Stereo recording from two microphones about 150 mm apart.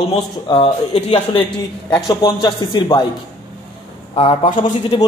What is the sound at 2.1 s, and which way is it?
Speech, 30° left (ahead or behind).